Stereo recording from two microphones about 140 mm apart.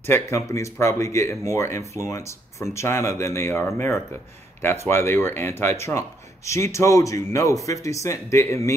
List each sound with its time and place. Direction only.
0.1 s speech: 20° left (ahead or behind)